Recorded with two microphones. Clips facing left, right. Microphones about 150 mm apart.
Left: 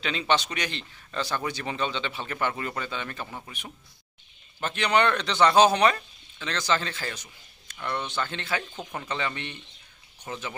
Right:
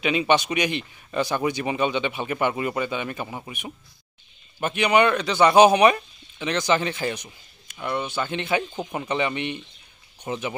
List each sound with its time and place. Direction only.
0.0 s speech: 15° right (ahead or behind)